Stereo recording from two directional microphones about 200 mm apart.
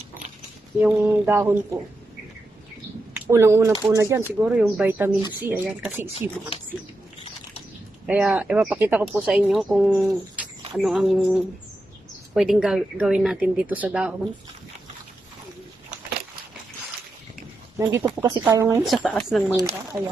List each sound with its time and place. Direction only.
0.7 s speech: 10° right (ahead or behind)
3.2 s speech: 15° right (ahead or behind)
8.1 s speech: 10° right (ahead or behind)
17.7 s speech: 15° right (ahead or behind)
18.9 s speech: centre (ahead or behind)